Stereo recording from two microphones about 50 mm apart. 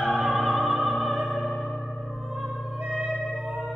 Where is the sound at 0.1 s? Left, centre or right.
Centre.